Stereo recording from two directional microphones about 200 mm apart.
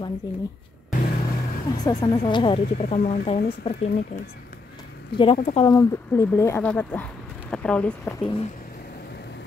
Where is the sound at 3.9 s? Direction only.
50° left (ahead or behind).